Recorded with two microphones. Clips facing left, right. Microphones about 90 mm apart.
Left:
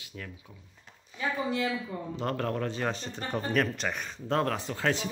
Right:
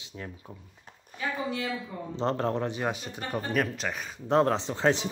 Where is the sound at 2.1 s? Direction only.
25° right (ahead or behind); by 4.2 s centre (ahead or behind).